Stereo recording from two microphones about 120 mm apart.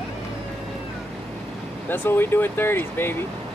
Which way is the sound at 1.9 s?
15° left (ahead or behind).